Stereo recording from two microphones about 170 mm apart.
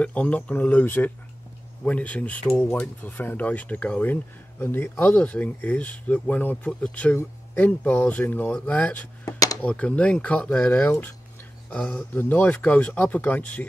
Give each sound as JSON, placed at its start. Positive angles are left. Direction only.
{"t": 0.0, "sound": "speech", "side_deg": 10}
{"t": 9.2, "sound": "a sound", "side_deg": 20}
{"t": 9.6, "sound": "speech", "side_deg": 5}